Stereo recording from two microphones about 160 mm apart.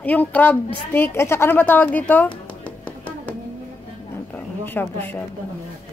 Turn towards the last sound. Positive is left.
turn(degrees=10)  # may be behind; listen again after turning